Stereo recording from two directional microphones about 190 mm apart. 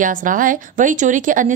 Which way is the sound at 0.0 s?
45° right (ahead or behind).